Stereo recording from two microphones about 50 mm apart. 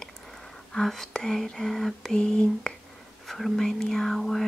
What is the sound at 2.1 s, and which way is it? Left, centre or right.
Speech, centre.